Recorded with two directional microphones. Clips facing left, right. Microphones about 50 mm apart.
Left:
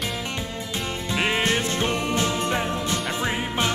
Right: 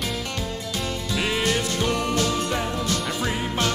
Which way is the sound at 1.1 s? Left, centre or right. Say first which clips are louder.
Left 1 dB; left.